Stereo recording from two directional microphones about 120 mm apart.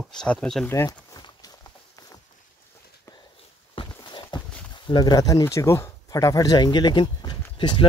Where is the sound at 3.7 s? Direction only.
45° left (ahead or behind).